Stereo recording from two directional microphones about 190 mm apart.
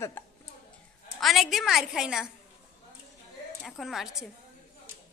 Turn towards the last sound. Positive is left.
turn(degrees=0)  # may be behind; listen again after turning